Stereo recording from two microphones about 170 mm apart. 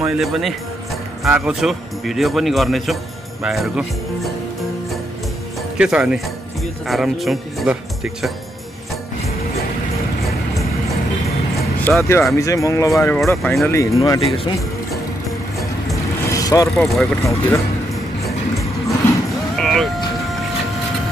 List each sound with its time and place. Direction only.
0.0 s speech: 5° right (ahead or behind)
5.8 s speech: 5° right (ahead or behind)
11.8 s speech: 10° left (ahead or behind)
13.4 s speech: centre (ahead or behind)
13.7 s speech: 20° left (ahead or behind)
14.2 s speech: 35° left (ahead or behind)
16.3 s vehicle: 20° left (ahead or behind)
16.7 s speech: centre (ahead or behind)
17.2 s speech: 15° left (ahead or behind)
19.5 s vehicle: centre (ahead or behind)